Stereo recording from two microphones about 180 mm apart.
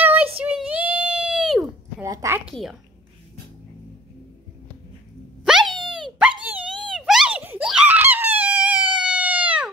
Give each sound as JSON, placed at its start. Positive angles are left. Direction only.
{"t": 0.0, "sound": "child singing", "side_deg": -10}
{"t": 0.4, "sound": "a sound", "side_deg": -5}
{"t": 2.0, "sound": "a woman's voice", "side_deg": -20}
{"t": 2.4, "sound": "a woman's voice", "side_deg": 0}
{"t": 5.4, "sound": "a sound", "side_deg": -5}
{"t": 5.8, "sound": "dog", "side_deg": 0}
{"t": 6.4, "sound": "giggle", "side_deg": -10}